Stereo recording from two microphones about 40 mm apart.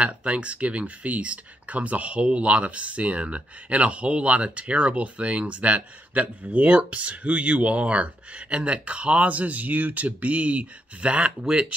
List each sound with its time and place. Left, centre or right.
0.0 s speech: right